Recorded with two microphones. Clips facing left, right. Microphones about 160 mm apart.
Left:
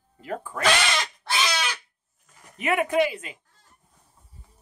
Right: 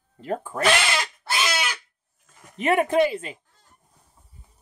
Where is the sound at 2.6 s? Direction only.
30° right (ahead or behind).